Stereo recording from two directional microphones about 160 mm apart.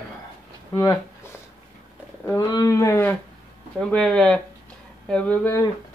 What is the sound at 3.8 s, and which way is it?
Speech, 5° left (ahead or behind).